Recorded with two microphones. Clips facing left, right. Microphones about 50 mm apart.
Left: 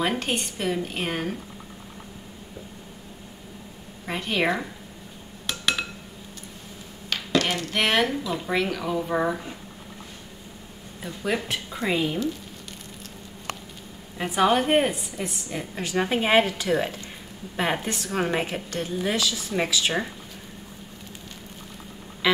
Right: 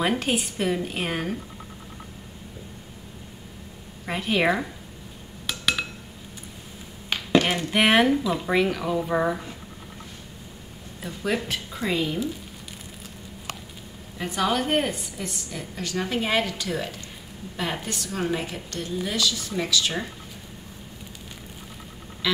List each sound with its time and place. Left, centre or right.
0.0 s a woman's voice: centre
4.0 s a woman's voice: centre
5.5 s a sound: centre
7.1 s a woman's voice: centre
11.0 s a woman's voice: centre
14.1 s a woman's voice: centre
15.5 s a woman's voice: left
22.2 s quack: left